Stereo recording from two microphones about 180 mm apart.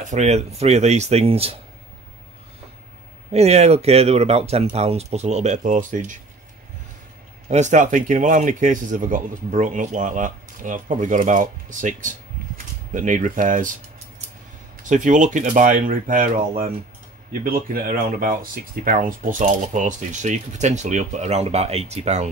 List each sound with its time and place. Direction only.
0.0 s speech: 40° right (ahead or behind)
3.3 s speech: 35° right (ahead or behind)
7.4 s speech: 40° right (ahead or behind)
14.8 s speech: 45° right (ahead or behind)